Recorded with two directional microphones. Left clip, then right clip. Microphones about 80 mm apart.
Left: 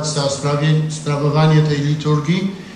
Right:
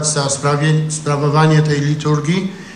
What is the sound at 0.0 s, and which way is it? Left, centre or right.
A man's voice, right.